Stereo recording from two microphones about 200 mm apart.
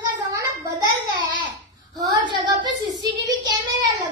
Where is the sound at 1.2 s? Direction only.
25° right (ahead or behind).